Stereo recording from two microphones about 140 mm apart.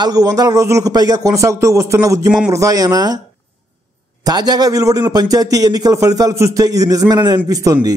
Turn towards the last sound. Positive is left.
turn(degrees=-25)  # may be behind; listen again after turning